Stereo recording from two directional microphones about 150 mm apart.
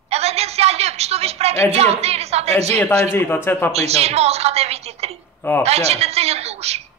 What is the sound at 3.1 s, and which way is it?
Speech, 15° left (ahead or behind).